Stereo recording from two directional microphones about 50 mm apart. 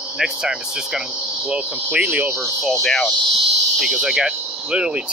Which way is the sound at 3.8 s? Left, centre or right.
Centre.